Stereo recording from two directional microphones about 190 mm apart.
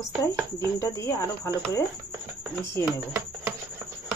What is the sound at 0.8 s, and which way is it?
Speech, 15° left (ahead or behind).